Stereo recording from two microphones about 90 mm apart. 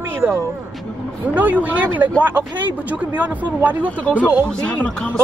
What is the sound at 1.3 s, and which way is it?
Speech, 20° right (ahead or behind).